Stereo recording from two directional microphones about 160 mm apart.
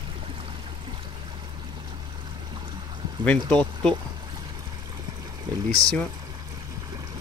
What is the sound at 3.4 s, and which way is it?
Speech, 5° left (ahead or behind).